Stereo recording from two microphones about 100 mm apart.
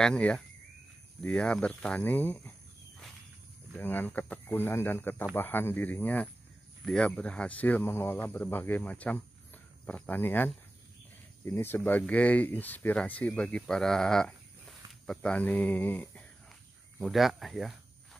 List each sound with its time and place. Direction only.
0.0 s speech: 10° left (ahead or behind)
3.7 s speech: 20° left (ahead or behind)
17.0 s speech: centre (ahead or behind)